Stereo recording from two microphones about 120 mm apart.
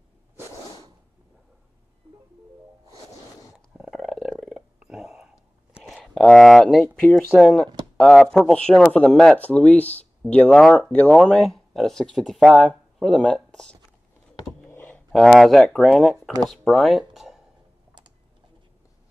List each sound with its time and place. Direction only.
3.7 s purr: 5° right (ahead or behind)
4.4 s a sound: centre (ahead or behind)
4.7 s whispering: 5° right (ahead or behind)
5.9 s speech: 5° left (ahead or behind)
14.7 s a sound: 15° left (ahead or behind)
15.1 s speech: centre (ahead or behind)